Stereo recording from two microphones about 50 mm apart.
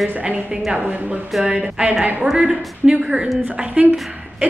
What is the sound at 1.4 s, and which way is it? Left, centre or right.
A woman's voice, centre.